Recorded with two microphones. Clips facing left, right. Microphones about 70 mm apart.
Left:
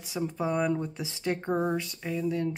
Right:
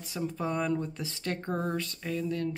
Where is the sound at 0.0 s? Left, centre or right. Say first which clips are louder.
Left 2 dB; centre.